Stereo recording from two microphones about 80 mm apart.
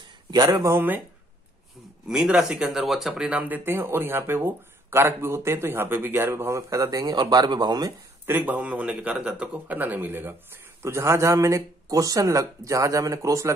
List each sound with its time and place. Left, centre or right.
0.0 s a sound: right
0.5 s speech: right
0.7 s a man's voice: right
2.0 s speech: centre
3.3 s speech: right
8.3 s a man's voice: right